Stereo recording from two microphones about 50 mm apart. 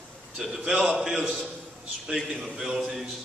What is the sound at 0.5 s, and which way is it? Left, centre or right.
A man's voice, centre.